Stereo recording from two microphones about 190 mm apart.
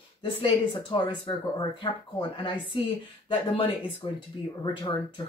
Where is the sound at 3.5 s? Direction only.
30° left (ahead or behind).